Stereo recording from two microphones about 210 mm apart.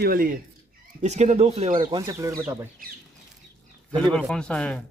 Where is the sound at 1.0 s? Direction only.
35° right (ahead or behind).